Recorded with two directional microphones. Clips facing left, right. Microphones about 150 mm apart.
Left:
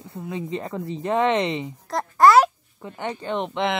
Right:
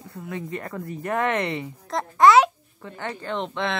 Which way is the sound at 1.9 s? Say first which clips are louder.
Left 1 dB; centre (ahead or behind).